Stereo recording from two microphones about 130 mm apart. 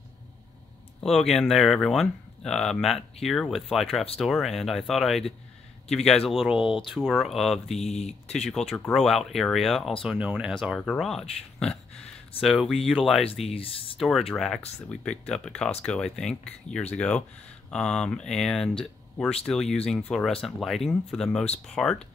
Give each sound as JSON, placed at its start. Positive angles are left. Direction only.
{"t": 1.0, "sound": "speech", "side_deg": 0}
{"t": 7.8, "sound": "speech", "side_deg": 55}
{"t": 8.5, "sound": "speech", "side_deg": 5}
{"t": 11.0, "sound": "speech", "side_deg": 0}
{"t": 13.5, "sound": "speech", "side_deg": 45}
{"t": 13.9, "sound": "speech", "side_deg": 0}